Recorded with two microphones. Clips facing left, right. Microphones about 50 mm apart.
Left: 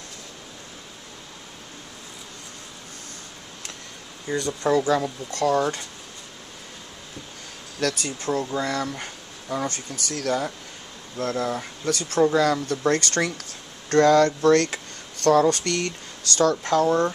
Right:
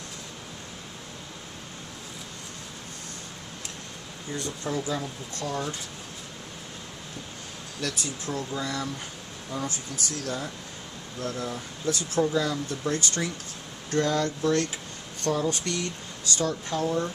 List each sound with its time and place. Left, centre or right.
4.3 s speech: left
7.8 s speech: left